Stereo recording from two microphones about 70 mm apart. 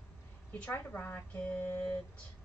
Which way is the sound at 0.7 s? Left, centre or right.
Left.